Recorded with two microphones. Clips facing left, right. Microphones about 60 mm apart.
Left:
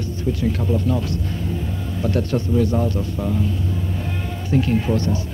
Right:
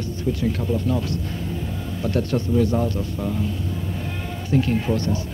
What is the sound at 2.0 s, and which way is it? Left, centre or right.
Speech, centre.